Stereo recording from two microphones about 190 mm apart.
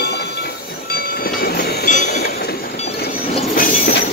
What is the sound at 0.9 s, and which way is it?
Train, 55° left (ahead or behind).